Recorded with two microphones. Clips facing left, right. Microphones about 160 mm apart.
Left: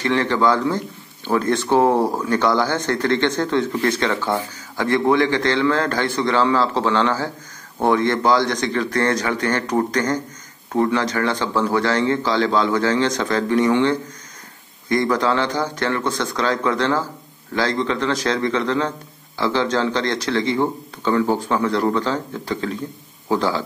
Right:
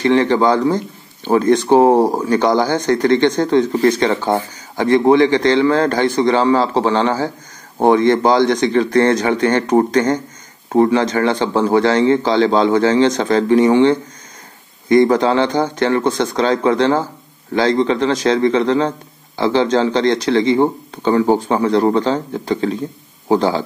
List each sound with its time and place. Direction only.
0.0 s a man's voice: 20° right (ahead or behind)
1.9 s speech: 40° right (ahead or behind)
2.2 s a man's voice: 15° right (ahead or behind)
4.2 s speech: 50° right (ahead or behind)
4.8 s a man's voice: 20° right (ahead or behind)
15.1 s a man's voice: 20° right (ahead or behind)